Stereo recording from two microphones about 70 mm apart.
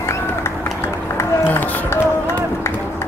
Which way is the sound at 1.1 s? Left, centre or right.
Left.